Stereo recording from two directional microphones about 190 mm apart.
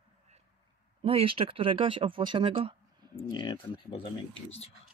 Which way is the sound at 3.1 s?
20° left (ahead or behind).